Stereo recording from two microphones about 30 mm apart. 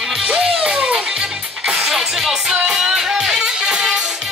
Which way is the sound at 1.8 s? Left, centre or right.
Centre.